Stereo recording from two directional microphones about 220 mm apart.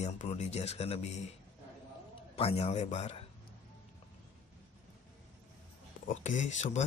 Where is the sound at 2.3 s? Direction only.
25° left (ahead or behind).